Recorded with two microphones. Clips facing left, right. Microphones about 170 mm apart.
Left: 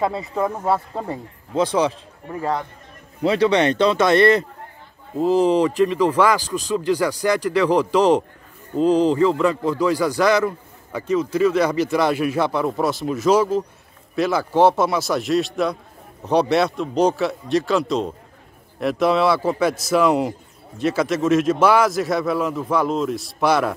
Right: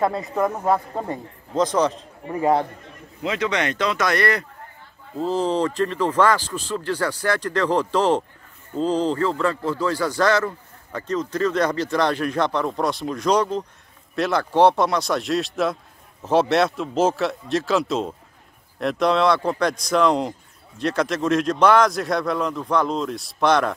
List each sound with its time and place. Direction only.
0.0 s a man's voice: centre (ahead or behind)
3.2 s a man's voice: 35° left (ahead or behind)
5.1 s a man's voice: 15° left (ahead or behind)